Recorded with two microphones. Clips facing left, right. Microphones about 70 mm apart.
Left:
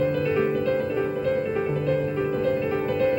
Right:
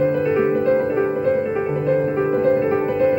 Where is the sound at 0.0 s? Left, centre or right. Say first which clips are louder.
Right 5 dB; right.